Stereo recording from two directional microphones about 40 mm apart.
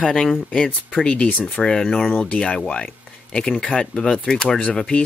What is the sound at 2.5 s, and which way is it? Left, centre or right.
Speech, left.